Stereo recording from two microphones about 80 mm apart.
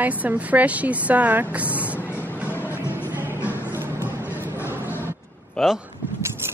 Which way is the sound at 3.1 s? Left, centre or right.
Right.